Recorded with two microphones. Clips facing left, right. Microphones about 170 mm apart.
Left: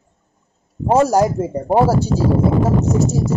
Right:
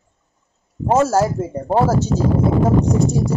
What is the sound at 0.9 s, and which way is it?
Speech, 15° left (ahead or behind).